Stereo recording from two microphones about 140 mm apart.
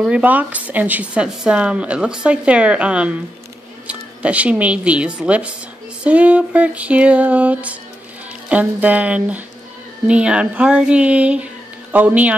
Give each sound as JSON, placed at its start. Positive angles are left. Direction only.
{"t": 0.0, "sound": "speech", "side_deg": -10}